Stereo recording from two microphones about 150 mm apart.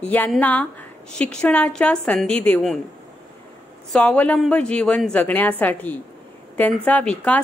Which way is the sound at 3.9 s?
10° left (ahead or behind).